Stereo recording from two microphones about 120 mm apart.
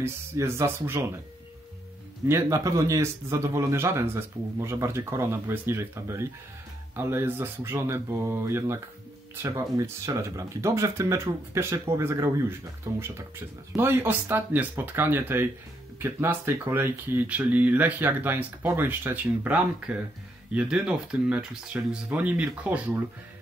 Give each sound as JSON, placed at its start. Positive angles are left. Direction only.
{"t": 0.0, "sound": "speech", "side_deg": -20}
{"t": 2.2, "sound": "speech", "side_deg": -25}